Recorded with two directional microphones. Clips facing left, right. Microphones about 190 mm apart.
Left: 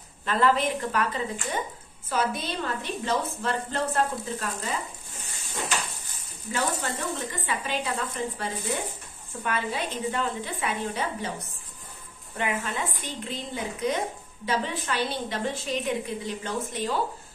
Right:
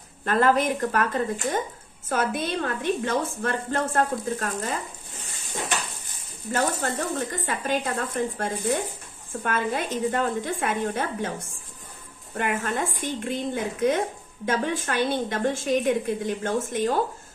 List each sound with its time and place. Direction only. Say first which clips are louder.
0.2 s a woman's voice: right 3 dB; 50° right (ahead or behind)
6.8 s a woman's voice: right 4 dB; 45° right (ahead or behind)